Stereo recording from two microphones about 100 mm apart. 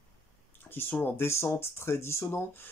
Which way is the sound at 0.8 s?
20° left (ahead or behind).